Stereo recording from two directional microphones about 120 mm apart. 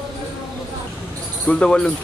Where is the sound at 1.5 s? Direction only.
5° left (ahead or behind).